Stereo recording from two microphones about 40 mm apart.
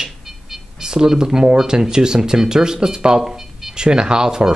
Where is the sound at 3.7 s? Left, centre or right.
Centre.